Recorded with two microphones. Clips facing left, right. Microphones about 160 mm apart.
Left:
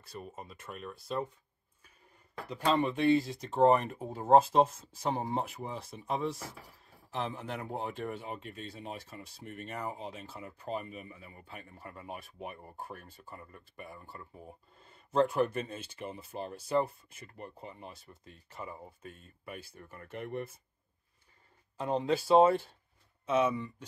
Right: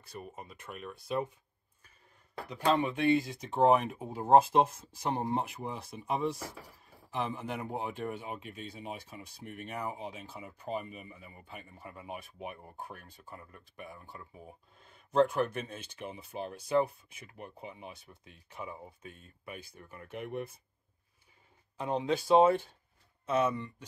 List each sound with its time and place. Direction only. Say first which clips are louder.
0.0 s speech: even; centre (ahead or behind)
2.4 s speech: even; centre (ahead or behind)
21.7 s speech: left 1 dB; centre (ahead or behind)